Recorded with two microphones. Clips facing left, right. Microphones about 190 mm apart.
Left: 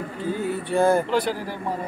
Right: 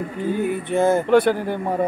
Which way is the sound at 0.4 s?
20° right (ahead or behind).